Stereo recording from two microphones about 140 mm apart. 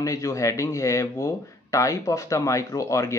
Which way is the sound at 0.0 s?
25° left (ahead or behind).